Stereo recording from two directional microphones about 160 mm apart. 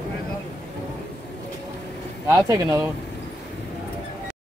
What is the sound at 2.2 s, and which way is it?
Speech, 20° right (ahead or behind).